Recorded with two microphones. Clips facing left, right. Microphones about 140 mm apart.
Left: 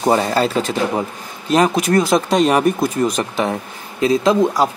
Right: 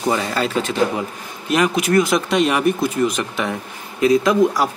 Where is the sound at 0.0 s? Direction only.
40° left (ahead or behind).